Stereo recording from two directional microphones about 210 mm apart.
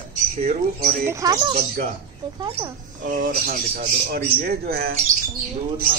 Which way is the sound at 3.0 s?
40° right (ahead or behind).